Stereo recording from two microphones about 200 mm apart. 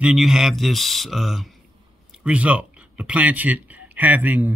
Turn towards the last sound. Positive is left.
turn(degrees=-10)  # may be behind; listen again after turning